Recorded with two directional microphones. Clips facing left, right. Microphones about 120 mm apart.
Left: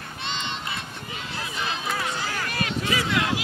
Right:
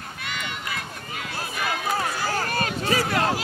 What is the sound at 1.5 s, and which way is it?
Run, 25° left (ahead or behind).